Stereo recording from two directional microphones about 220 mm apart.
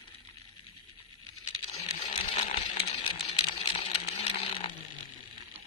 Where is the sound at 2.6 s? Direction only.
25° left (ahead or behind).